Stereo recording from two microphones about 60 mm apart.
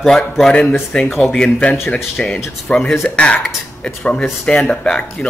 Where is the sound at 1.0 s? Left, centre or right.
Centre.